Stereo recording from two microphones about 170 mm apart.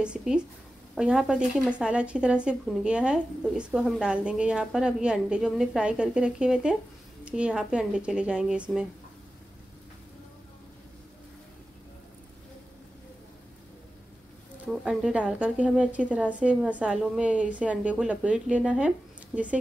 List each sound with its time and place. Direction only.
0.0 s speech: 5° right (ahead or behind)
14.7 s a woman's voice: centre (ahead or behind)